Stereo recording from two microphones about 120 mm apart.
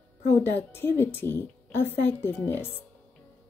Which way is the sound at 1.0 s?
20° left (ahead or behind).